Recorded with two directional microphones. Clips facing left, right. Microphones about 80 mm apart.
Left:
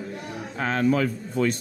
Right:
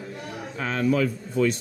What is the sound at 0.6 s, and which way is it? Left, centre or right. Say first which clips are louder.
Speech: left 1 dB; left.